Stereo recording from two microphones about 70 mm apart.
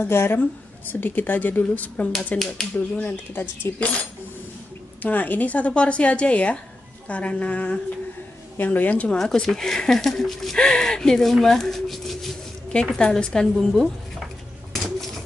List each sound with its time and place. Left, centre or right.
0.0 s speech: left
5.0 s speech: left
9.2 s speech: centre
11.4 s a sound: centre